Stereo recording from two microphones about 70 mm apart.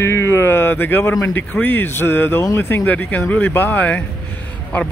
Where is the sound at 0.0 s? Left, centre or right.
Left.